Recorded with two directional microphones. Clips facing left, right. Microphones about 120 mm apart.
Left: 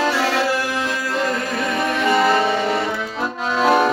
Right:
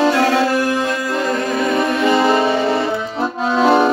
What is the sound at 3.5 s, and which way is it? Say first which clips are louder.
Accordion: right 3 dB; 25° right (ahead or behind).